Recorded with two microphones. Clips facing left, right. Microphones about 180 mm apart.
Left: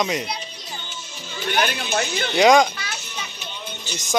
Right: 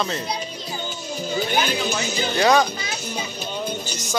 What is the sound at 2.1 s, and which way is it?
Speech, 40° right (ahead or behind).